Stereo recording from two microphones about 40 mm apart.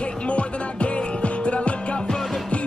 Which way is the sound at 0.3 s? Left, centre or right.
Left.